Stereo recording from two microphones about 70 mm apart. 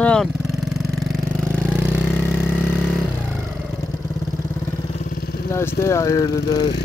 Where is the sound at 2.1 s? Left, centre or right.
Left.